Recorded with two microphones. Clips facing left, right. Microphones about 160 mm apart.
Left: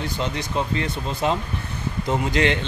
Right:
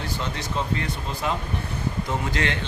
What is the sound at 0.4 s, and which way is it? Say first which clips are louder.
A man's voice: left 2 dB; 20° left (ahead or behind).